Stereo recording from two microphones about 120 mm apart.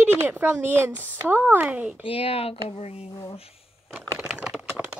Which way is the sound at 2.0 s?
50° left (ahead or behind).